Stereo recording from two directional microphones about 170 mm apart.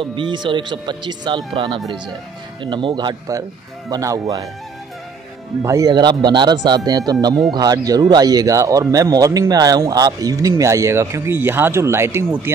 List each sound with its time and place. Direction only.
0.0 s speech: 30° right (ahead or behind)
1.8 s speech: centre (ahead or behind)
2.6 s speech: 30° right (ahead or behind)
5.6 s speech: 20° right (ahead or behind)